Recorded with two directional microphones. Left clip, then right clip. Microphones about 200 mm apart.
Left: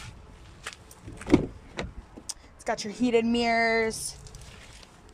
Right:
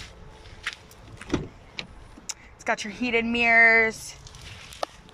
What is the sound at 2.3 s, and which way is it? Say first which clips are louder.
Speech: right 4 dB; 10° left (ahead or behind).